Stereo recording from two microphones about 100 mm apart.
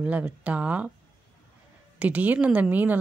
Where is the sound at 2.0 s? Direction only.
15° right (ahead or behind).